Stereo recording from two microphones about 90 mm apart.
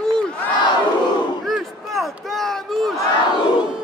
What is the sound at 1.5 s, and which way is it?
Speech, centre (ahead or behind).